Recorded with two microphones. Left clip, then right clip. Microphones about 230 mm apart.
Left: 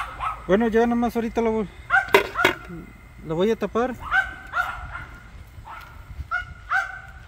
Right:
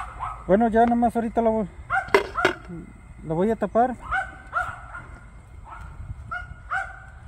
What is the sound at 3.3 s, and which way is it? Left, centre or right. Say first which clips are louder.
Speech: left 1 dB; right.